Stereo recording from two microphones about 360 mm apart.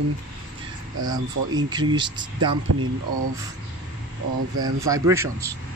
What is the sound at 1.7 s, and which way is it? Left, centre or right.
Speech, centre.